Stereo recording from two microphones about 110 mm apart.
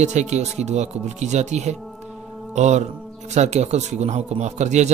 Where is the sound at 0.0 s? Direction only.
90° right.